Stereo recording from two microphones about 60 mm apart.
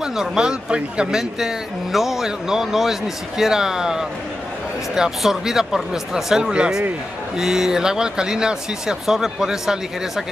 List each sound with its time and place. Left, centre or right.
0.0 s speech: centre
1.4 s speech: centre
6.5 s speech: centre